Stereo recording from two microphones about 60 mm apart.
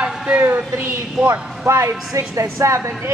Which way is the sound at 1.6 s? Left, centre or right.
Right.